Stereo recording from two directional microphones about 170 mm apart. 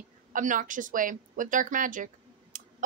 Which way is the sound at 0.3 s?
50° right (ahead or behind).